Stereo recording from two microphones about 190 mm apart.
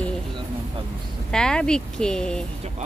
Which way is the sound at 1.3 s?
5° left (ahead or behind).